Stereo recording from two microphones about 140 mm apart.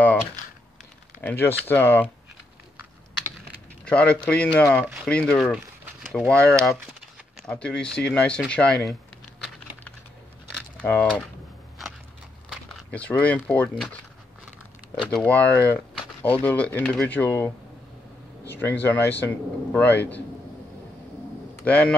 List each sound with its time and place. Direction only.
0.0 s crumpling: 10° left (ahead or behind)
1.2 s speech: 15° left (ahead or behind)
3.8 s speech: 10° left (ahead or behind)
10.5 s a sound: 10° left (ahead or behind)
12.4 s speech: 5° left (ahead or behind)
15.0 s speech: 10° left (ahead or behind)
21.6 s speech: 10° left (ahead or behind)